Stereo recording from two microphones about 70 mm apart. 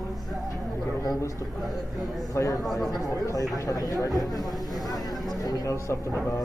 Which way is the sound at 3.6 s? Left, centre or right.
Left.